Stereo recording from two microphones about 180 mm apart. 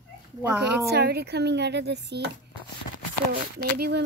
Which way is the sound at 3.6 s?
60° right (ahead or behind).